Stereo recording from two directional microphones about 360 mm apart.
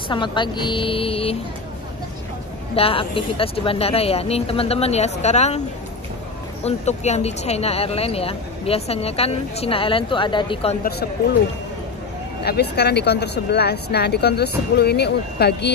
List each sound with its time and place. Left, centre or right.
0.1 s speech: centre
2.7 s speech: centre
6.6 s speech: centre
12.4 s speech: left